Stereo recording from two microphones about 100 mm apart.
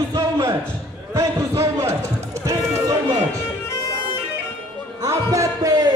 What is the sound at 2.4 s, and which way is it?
Music, 30° right (ahead or behind).